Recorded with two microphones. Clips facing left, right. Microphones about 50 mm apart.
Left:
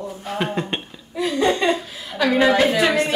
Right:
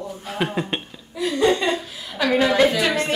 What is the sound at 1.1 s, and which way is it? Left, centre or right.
Speech, left.